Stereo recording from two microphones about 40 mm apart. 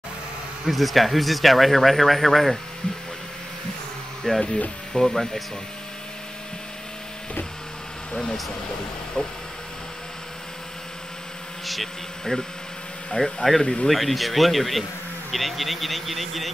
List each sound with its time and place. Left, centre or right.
0.7 s speech: centre
4.2 s speech: centre
8.1 s speech: centre
9.2 s a sound: left
11.6 s speech: centre